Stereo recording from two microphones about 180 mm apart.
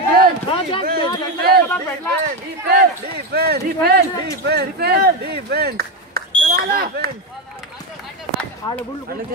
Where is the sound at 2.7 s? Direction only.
60° right (ahead or behind).